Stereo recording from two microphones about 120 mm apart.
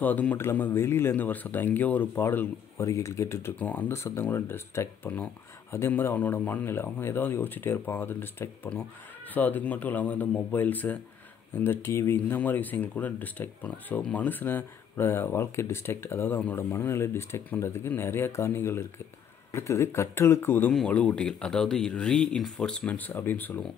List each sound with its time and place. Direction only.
0.0 s speech: 15° left (ahead or behind)
20.7 s speech: 10° left (ahead or behind)